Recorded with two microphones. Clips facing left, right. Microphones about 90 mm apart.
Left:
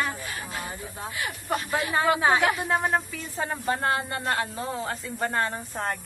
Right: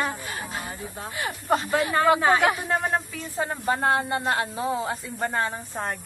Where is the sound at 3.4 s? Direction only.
20° right (ahead or behind); by 5.6 s centre (ahead or behind).